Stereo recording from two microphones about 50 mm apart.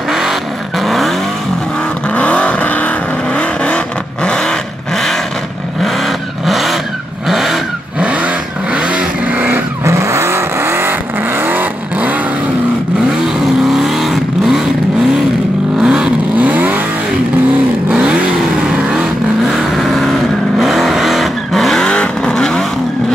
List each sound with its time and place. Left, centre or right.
0.1 s vehicle: centre
2.1 s vehicle: left
6.4 s vehicle: centre
8.0 s vehicle: right
9.8 s vehicle: right
11.4 s vehicle: right
13.7 s vehicle: centre
15.8 s vehicle: centre
16.3 s vehicle: right
19.5 s vehicle: centre
21.8 s vehicle: centre